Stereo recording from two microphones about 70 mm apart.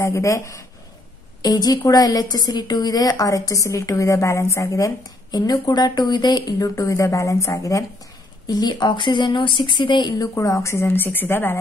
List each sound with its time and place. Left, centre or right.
0.0 s a woman's voice: left
1.4 s a woman's voice: left
6.6 s a woman's voice: left
8.5 s speech: left
10.3 s speech: left